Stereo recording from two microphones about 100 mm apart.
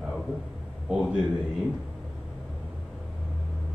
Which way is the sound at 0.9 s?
10° right (ahead or behind).